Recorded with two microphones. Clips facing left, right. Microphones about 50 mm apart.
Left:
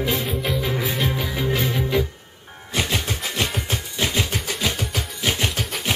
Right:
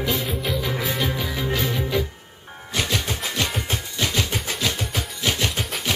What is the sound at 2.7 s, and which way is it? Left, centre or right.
Music, centre.